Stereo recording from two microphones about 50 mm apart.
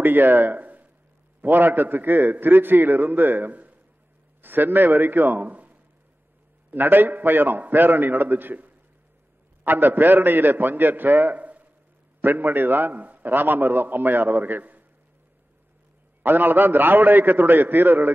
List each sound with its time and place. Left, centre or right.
0.0 s a man's voice: right
16.2 s a man's voice: right